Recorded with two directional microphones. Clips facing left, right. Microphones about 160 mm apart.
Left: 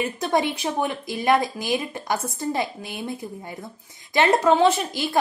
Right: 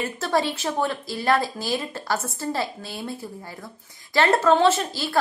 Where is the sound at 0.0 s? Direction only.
15° left (ahead or behind).